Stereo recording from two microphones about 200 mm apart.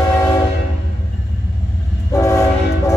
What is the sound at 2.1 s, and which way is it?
Train, 15° left (ahead or behind).